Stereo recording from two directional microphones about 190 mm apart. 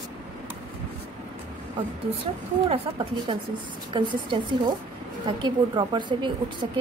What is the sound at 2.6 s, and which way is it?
A woman's voice, 30° right (ahead or behind).